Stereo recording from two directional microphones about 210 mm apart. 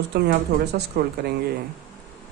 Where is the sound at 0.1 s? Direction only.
50° right (ahead or behind).